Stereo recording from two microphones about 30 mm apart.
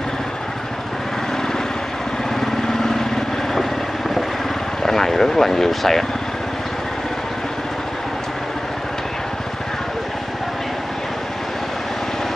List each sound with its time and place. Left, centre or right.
2.4 s vehicle: centre
4.8 s vehicle: centre